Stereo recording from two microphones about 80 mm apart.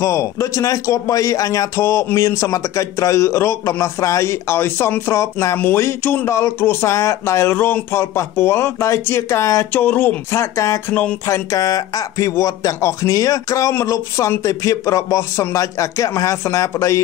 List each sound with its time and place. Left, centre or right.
0.0 s a man's voice: left
9.7 s speech: left
10.3 s a man's voice: left
10.9 s speech: centre
11.5 s a man's voice: left